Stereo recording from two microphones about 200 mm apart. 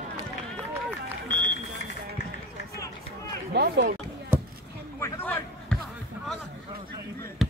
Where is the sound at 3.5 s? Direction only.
55° right (ahead or behind).